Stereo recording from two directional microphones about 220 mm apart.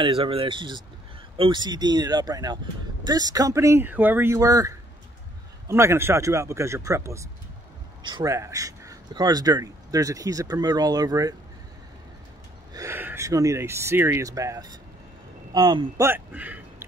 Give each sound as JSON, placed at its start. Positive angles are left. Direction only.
{"t": 0.0, "sound": "speech", "side_deg": -25}
{"t": 12.7, "sound": "speech", "side_deg": -10}
{"t": 16.1, "sound": "a man's voice", "side_deg": -10}